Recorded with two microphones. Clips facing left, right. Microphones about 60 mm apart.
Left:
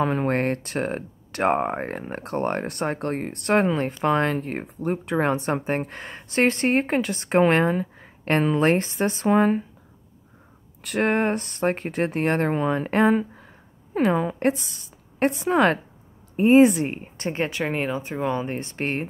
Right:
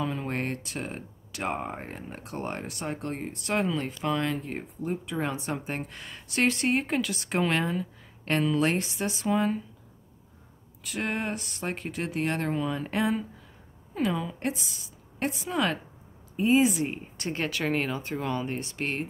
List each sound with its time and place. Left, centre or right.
0.0 s speech: left
10.8 s speech: left
16.9 s speech: left
18.6 s speech: left